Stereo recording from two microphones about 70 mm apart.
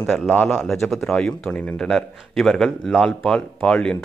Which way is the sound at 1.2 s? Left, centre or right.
Centre.